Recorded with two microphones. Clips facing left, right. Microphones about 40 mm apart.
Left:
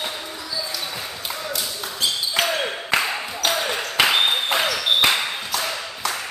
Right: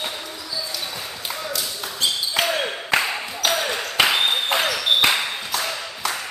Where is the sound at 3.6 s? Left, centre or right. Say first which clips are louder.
Left 1 dB; centre.